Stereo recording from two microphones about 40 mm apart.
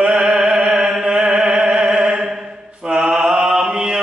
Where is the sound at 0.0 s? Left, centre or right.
Right.